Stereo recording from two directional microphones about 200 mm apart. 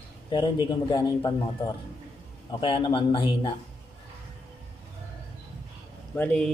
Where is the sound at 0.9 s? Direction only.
20° left (ahead or behind).